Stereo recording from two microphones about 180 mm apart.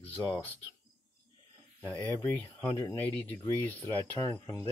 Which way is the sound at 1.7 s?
10° left (ahead or behind).